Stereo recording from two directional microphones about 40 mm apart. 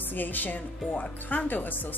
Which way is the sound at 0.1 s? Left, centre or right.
Left.